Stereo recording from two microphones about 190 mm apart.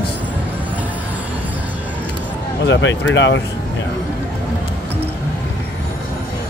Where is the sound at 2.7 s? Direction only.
70° left (ahead or behind).